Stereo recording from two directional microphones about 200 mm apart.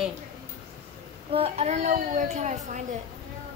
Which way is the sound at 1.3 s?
30° right (ahead or behind).